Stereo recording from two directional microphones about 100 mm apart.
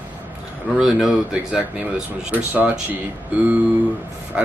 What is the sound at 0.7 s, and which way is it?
Speech, 5° right (ahead or behind).